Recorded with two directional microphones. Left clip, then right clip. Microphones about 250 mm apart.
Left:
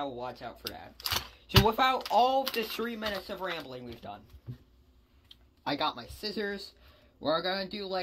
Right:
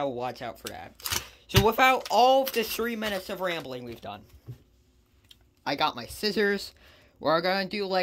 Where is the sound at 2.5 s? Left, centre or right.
Right.